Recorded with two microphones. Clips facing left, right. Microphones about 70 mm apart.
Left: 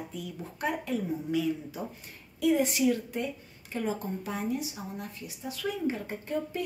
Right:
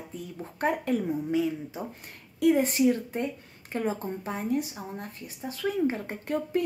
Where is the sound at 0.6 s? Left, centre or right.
Right.